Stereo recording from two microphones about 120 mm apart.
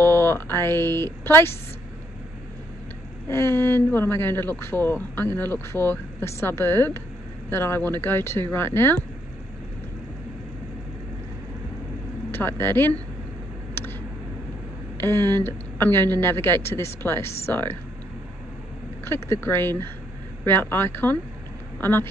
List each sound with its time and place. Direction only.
0.0 s speech: 20° left (ahead or behind)
3.3 s speech: 20° left (ahead or behind)
12.3 s speech: 15° left (ahead or behind)
15.0 s a woman's voice: 20° left (ahead or behind)
19.0 s speech: 20° left (ahead or behind)